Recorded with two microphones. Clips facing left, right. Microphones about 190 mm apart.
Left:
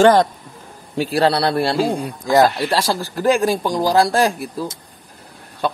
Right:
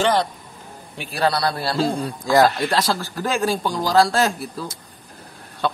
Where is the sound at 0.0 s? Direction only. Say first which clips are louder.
Left 7 dB; 45° left (ahead or behind).